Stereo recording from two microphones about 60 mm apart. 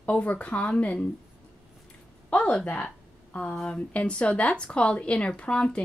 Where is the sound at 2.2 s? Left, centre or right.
Left.